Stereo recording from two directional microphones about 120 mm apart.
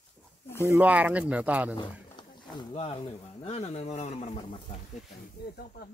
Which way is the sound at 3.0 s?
60° left (ahead or behind).